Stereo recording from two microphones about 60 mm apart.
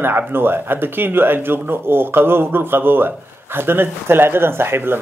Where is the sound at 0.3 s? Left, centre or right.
Right.